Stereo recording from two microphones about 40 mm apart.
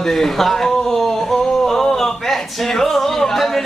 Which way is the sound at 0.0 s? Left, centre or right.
Centre.